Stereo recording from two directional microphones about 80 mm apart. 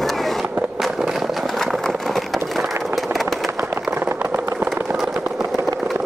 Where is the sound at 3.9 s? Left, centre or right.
Right.